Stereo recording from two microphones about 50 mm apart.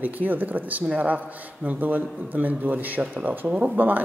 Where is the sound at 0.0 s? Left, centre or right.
Right.